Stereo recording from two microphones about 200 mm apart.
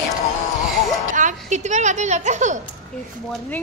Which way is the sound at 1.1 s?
40° right (ahead or behind).